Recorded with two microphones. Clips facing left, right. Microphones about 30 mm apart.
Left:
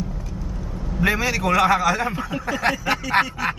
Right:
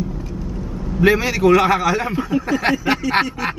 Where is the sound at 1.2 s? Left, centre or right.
Centre.